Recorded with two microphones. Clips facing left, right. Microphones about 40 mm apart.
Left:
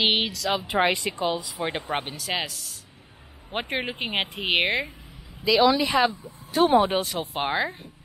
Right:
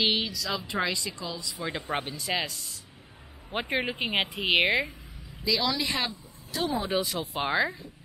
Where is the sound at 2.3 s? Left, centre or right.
Centre.